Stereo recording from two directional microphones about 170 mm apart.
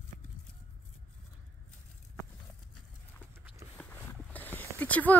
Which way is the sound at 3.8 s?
10° left (ahead or behind).